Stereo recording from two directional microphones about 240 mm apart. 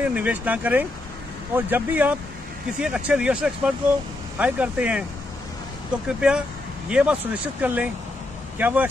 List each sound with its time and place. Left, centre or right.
0.0 s speech: centre
6.0 s speech: centre